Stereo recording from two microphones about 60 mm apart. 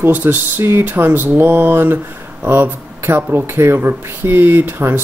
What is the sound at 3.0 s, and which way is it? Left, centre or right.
Speech, right.